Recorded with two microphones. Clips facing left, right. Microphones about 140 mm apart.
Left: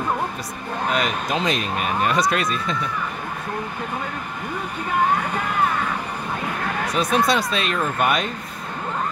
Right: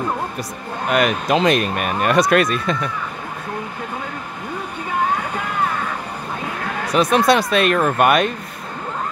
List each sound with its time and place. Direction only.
0.9 s speech: 65° right (ahead or behind)
7.0 s speech: 75° right (ahead or behind)